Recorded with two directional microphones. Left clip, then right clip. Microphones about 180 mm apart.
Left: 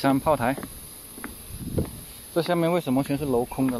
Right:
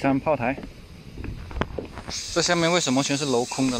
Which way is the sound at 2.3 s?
10° left (ahead or behind).